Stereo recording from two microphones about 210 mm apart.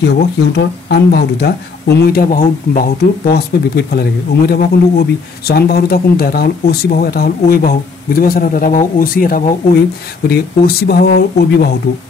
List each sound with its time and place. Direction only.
0.6 s speech: 50° left (ahead or behind)